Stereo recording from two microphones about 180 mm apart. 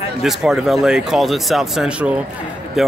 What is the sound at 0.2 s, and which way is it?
Speech, centre (ahead or behind).